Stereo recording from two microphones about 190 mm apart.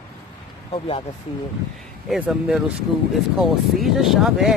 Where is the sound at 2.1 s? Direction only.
5° right (ahead or behind).